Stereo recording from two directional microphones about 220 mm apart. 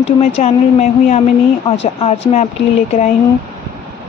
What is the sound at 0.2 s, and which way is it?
Speech, 30° left (ahead or behind).